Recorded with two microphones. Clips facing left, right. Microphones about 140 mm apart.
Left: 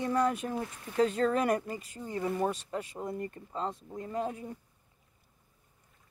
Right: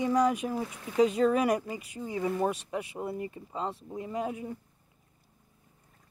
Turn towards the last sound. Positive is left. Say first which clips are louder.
# right 1 dB
turn(degrees=-10)  # may be behind; listen again after turning